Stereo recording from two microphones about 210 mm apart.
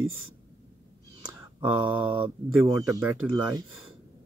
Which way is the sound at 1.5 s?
10° right (ahead or behind).